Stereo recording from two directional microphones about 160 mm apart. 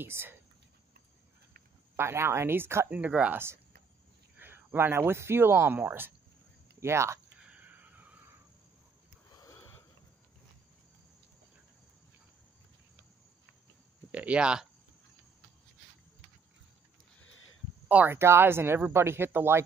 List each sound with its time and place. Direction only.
0.0 s speech: 15° right (ahead or behind)
2.0 s speech: 15° right (ahead or behind)
6.8 s a sound: 15° right (ahead or behind)
9.3 s a sound: 20° left (ahead or behind)
14.1 s speech: 10° right (ahead or behind)
17.8 s speech: 10° right (ahead or behind)